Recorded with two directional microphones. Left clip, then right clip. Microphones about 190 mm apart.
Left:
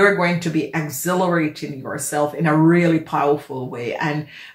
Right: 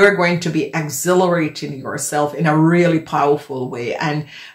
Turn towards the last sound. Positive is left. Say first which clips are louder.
# right 2 dB
turn(degrees=-30)  # may be behind; listen again after turning